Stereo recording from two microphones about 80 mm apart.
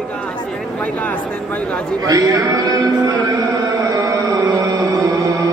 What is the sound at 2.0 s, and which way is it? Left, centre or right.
Speech, right.